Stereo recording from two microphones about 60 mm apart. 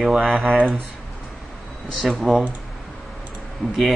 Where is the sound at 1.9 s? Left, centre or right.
Centre.